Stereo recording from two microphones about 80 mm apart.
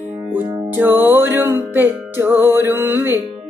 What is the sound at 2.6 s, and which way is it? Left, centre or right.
Mantra, right.